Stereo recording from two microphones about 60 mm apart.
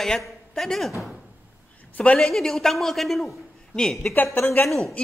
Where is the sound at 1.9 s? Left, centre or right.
Left.